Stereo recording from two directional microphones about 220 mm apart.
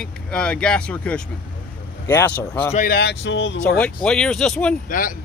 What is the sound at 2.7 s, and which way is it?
Speech, 40° left (ahead or behind).